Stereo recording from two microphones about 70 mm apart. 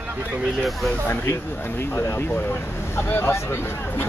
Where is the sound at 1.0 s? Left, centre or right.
Left.